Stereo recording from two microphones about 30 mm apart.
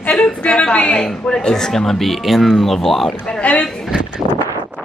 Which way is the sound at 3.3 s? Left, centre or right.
Left.